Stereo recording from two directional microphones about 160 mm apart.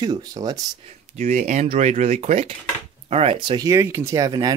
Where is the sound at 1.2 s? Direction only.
50° right (ahead or behind); by 3.7 s 35° right (ahead or behind).